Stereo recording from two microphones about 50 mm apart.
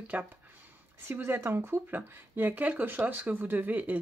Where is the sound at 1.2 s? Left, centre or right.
Right.